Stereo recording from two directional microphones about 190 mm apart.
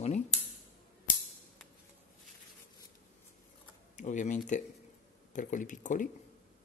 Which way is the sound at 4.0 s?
40° left (ahead or behind).